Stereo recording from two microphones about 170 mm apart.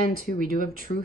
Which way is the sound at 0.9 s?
40° left (ahead or behind).